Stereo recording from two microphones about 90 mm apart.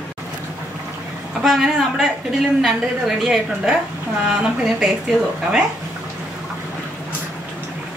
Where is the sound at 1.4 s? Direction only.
Centre (ahead or behind).